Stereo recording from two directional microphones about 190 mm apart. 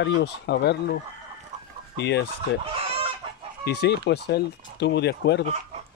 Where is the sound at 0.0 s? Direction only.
65° left (ahead or behind).